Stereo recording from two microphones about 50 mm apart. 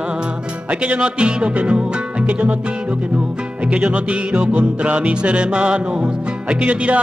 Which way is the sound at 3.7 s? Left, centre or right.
Right.